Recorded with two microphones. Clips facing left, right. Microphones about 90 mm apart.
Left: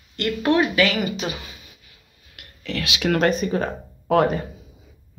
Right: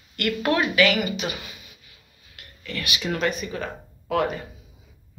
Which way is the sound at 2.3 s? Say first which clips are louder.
Left 5 dB; 75° left (ahead or behind).